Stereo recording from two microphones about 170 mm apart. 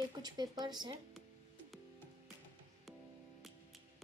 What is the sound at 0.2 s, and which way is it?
Speech, 25° right (ahead or behind).